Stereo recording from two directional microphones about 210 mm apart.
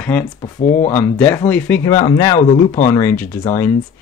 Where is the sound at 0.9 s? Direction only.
10° left (ahead or behind).